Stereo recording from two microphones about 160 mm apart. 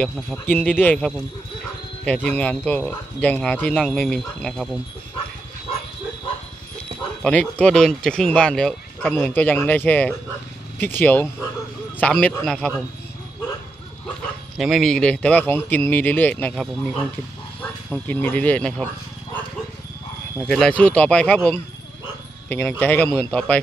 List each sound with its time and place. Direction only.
0.0 s speech: 5° left (ahead or behind)
2.2 s speech: 10° left (ahead or behind)
7.2 s speech: 5° left (ahead or behind)
14.6 s speech: centre (ahead or behind)
20.4 s speech: 5° left (ahead or behind)
22.5 s speech: 10° left (ahead or behind)